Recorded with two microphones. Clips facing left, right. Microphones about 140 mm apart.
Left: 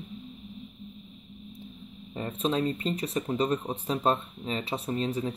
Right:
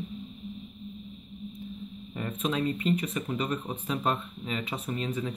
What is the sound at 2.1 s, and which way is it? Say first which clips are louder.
Speech: left 2 dB; 30° left (ahead or behind).